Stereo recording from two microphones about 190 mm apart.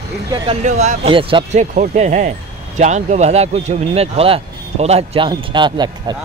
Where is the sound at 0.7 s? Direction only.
40° right (ahead or behind).